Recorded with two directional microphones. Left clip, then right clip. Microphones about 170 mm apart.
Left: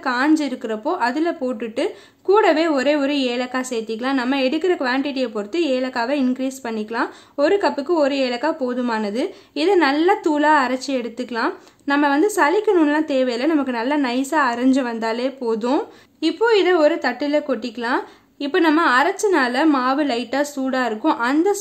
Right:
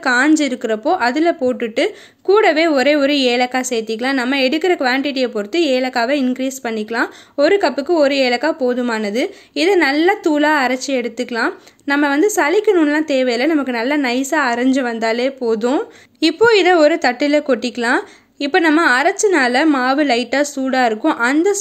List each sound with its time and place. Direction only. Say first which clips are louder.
0.0 s a woman's voice: right 5 dB; 20° right (ahead or behind)
16.2 s a woman's voice: right 5 dB; 30° right (ahead or behind)